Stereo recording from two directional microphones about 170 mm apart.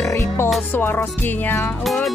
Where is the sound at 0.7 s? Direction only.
10° left (ahead or behind).